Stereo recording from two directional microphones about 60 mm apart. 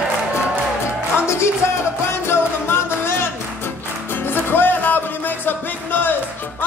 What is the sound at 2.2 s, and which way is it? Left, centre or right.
Music, left.